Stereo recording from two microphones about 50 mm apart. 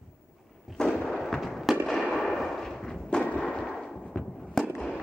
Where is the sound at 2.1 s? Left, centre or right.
Centre.